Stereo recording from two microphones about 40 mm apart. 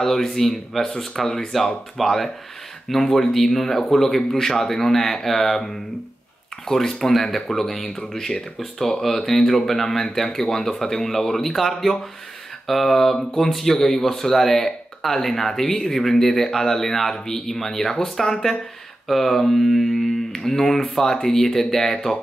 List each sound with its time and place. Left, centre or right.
0.0 s speech: centre
6.7 s speech: centre